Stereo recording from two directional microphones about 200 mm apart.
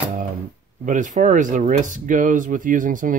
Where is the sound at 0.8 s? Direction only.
40° right (ahead or behind).